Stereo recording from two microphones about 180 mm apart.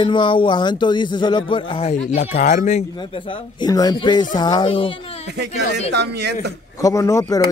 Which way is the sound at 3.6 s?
20° left (ahead or behind).